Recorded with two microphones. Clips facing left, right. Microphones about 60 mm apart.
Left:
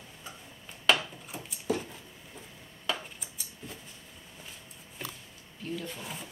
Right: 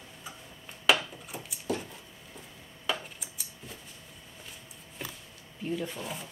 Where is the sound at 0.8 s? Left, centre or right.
Centre.